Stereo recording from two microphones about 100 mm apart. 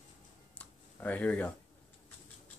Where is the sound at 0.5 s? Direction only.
15° left (ahead or behind).